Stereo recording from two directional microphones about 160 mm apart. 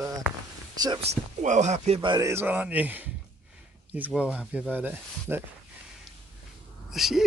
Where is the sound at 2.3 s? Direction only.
10° right (ahead or behind).